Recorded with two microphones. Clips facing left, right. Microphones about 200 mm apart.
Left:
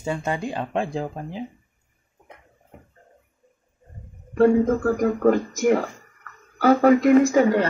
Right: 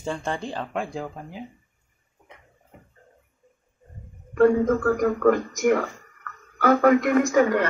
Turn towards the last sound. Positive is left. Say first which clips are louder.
# left 2 dB
turn(degrees=25)  # may be behind; listen again after turning